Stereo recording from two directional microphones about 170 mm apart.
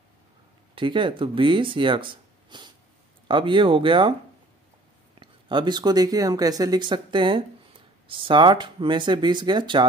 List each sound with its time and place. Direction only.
0.7 s speech: 30° right (ahead or behind)
5.2 s speech: 25° right (ahead or behind)